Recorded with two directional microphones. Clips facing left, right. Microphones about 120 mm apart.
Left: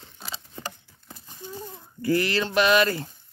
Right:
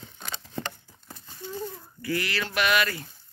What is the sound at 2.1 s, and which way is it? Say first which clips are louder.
Speech: left 6 dB; 35° left (ahead or behind).